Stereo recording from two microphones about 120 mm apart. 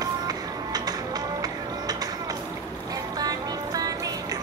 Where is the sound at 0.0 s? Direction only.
30° right (ahead or behind).